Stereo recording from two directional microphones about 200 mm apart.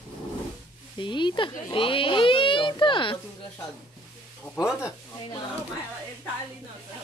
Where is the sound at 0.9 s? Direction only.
25° left (ahead or behind).